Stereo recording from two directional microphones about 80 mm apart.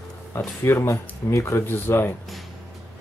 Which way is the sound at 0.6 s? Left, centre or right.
Left.